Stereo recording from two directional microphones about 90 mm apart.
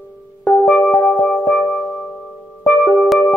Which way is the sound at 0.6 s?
15° left (ahead or behind).